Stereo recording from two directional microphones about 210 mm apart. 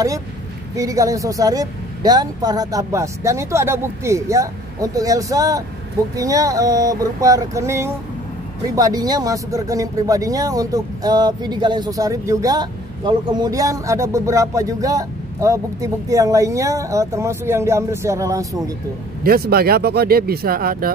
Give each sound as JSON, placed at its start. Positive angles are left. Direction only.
{"t": 0.7, "sound": "speech", "side_deg": -15}
{"t": 19.2, "sound": "speech", "side_deg": -45}